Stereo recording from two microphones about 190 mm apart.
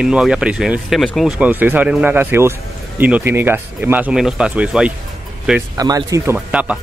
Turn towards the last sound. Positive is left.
turn(degrees=-5)  # may be behind; listen again after turning